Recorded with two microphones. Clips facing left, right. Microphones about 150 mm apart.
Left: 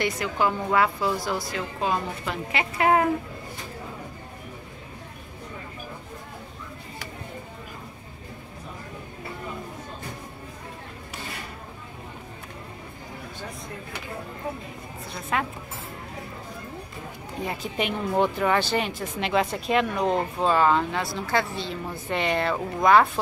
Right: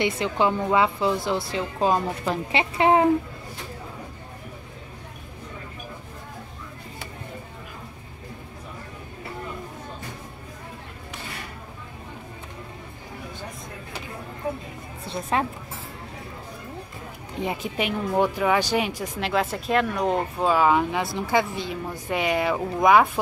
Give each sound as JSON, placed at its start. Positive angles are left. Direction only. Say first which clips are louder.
{"t": 0.0, "sound": "speech", "louder": "right 2 dB", "side_deg": -25}
{"t": 1.8, "sound": "a woman's voice", "louder": "right 5 dB", "side_deg": -35}
{"t": 2.8, "sound": "speech", "louder": "right 2 dB", "side_deg": -25}
{"t": 15.0, "sound": "a sound", "louder": "right 3 dB", "side_deg": -30}
{"t": 17.7, "sound": "speech", "louder": "even", "side_deg": -5}